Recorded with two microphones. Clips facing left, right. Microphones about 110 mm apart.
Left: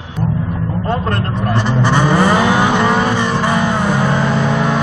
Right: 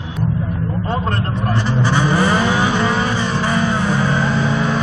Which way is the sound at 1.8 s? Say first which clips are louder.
Left 3 dB; 65° left (ahead or behind).